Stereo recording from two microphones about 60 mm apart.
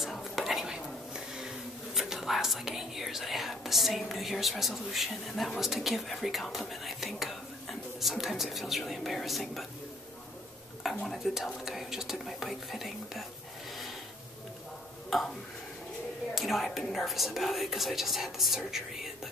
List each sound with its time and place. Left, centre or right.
0.0 s whispering: centre
2.0 s speech: centre
10.8 s speech: centre
15.1 s tick-tock: centre
16.3 s speech: centre